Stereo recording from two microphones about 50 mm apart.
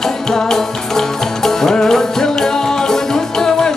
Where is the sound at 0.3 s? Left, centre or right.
Centre.